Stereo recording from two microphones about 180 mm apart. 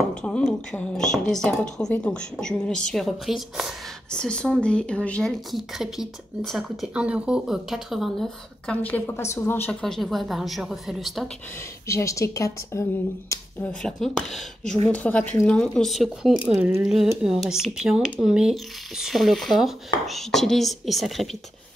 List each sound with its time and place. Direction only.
0.2 s speech: 5° left (ahead or behind)
11.9 s a woman's voice: 15° left (ahead or behind); by 21.4 s centre (ahead or behind)